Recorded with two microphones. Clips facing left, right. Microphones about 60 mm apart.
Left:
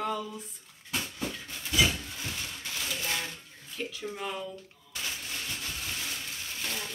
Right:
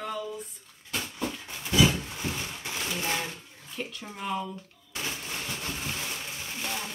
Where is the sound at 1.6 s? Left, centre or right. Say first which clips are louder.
Right 4 dB; right.